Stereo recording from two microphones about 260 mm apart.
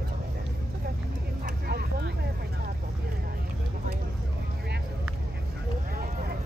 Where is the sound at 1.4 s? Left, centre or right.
Right.